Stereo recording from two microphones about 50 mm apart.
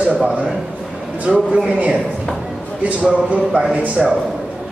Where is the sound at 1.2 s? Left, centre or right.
Right.